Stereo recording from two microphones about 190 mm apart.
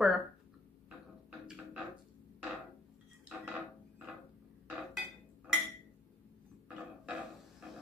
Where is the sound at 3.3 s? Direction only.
5° right (ahead or behind).